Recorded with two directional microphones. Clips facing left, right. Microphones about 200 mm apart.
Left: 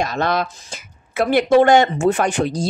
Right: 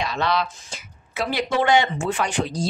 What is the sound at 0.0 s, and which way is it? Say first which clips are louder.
A woman's voice: left 3 dB; 45° left (ahead or behind).